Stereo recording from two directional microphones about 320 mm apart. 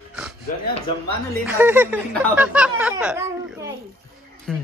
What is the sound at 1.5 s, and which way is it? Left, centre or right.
Speech, centre.